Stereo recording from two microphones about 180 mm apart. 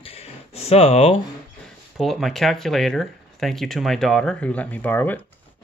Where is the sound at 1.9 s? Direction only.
Centre (ahead or behind).